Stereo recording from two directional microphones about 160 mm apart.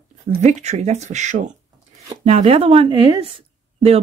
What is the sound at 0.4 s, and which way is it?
Speech, 45° right (ahead or behind).